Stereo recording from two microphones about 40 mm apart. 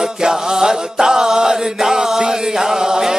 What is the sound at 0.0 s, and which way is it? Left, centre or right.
Chant, centre.